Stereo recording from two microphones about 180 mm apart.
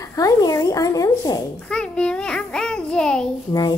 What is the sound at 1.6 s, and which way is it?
A child's voice, 5° left (ahead or behind).